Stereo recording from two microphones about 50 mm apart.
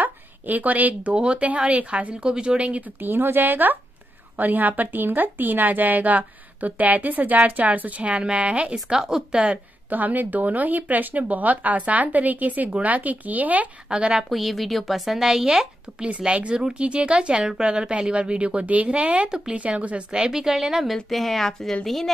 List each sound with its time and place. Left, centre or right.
0.0 s a sound: right
1.1 s a woman's voice: right
3.0 s a woman's voice: right
8.8 s a woman's voice: centre
9.8 s a woman's voice: right
13.8 s a woman's voice: centre
14.3 s a woman's voice: centre